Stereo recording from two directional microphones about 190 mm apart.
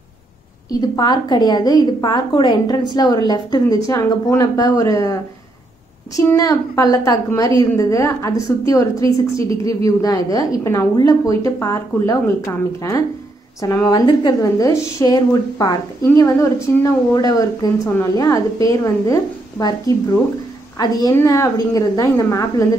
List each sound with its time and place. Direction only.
0.7 s a woman's voice: 20° left (ahead or behind)
6.1 s a woman's voice: 20° left (ahead or behind)